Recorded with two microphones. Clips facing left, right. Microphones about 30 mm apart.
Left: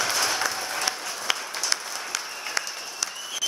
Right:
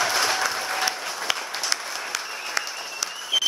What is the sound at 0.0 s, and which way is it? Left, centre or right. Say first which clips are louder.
Applause: right 3 dB; right.